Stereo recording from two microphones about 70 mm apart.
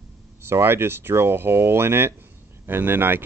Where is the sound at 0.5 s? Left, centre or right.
Right.